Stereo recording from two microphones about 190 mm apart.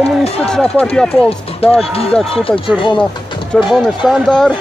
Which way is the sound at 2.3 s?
30° left (ahead or behind).